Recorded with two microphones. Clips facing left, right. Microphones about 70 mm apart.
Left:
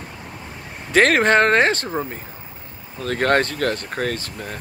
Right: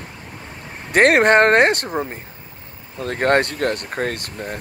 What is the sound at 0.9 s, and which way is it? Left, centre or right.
Speech, right.